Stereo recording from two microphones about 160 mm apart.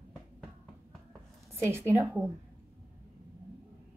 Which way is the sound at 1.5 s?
15° right (ahead or behind).